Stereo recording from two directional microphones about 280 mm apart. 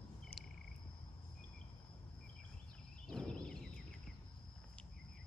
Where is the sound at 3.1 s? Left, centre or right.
Centre.